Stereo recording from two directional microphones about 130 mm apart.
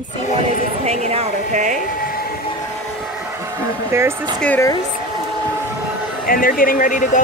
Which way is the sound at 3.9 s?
20° right (ahead or behind).